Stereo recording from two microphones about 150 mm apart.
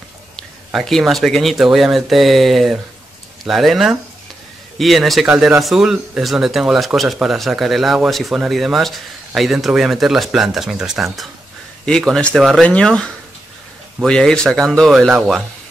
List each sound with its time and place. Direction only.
0.7 s speech: centre (ahead or behind)